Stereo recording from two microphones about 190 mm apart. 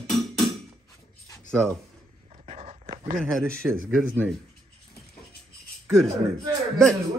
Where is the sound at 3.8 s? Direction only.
10° right (ahead or behind).